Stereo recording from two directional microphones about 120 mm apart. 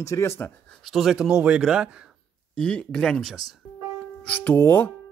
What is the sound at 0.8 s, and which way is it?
Speech, centre (ahead or behind).